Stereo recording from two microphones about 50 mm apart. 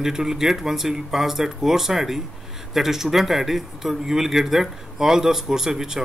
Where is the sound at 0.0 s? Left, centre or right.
Centre.